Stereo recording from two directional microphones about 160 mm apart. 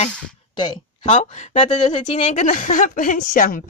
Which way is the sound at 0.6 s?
40° left (ahead or behind).